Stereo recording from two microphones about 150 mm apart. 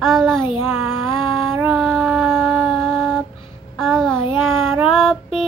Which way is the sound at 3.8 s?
Centre (ahead or behind).